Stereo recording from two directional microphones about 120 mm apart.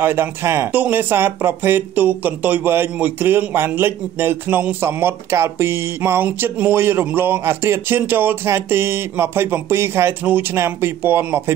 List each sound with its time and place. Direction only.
0.0 s speech: 20° right (ahead or behind)